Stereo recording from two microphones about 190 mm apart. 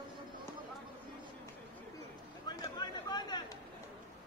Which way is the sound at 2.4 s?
20° left (ahead or behind).